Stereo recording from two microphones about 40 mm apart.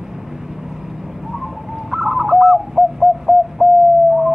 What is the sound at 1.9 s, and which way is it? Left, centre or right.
Bird, centre.